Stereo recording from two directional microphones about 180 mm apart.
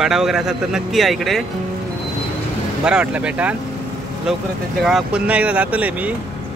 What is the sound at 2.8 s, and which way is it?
Speech, 5° right (ahead or behind).